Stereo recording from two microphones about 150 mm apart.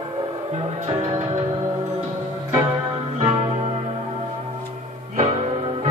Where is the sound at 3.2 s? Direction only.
35° right (ahead or behind).